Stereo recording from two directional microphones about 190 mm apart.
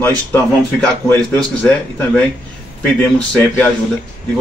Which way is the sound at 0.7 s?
10° left (ahead or behind).